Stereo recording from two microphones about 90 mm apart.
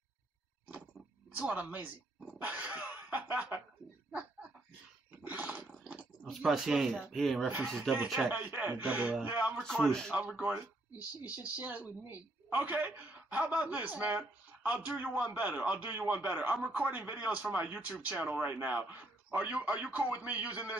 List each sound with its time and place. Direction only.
1.3 s speech: 20° right (ahead or behind)
2.3 s dog: 15° right (ahead or behind)
4.1 s a sound: 15° right (ahead or behind)
5.2 s wild animals: 15° right (ahead or behind)
6.2 s speech: centre (ahead or behind)
8.3 s speech: 15° right (ahead or behind)
9.6 s a man's voice: 10° left (ahead or behind)
10.1 s speech: 15° right (ahead or behind)